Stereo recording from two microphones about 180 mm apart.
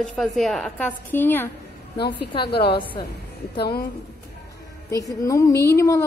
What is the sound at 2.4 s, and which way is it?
Speech, 65° left (ahead or behind).